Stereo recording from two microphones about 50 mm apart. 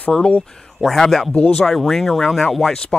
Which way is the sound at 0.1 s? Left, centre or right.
Centre.